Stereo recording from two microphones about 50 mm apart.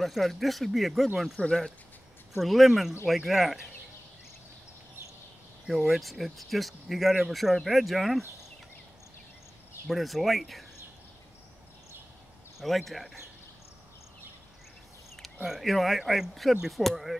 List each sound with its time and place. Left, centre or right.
0.0 s speech: centre
1.4 s speech: centre
2.3 s speech: centre
5.8 s speech: centre
9.8 s speech: centre
12.5 s speech: centre
15.4 s speech: centre